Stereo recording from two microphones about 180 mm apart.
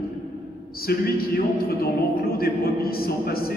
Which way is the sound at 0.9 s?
60° left (ahead or behind).